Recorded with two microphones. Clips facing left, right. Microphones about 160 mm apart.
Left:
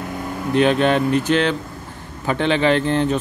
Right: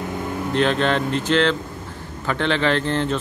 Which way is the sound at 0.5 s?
15° left (ahead or behind).